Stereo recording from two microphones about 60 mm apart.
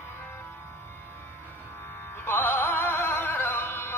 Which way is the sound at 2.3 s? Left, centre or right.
Left.